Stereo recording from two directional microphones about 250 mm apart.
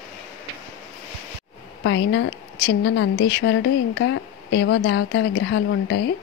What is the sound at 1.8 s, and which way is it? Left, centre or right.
A woman's voice, left.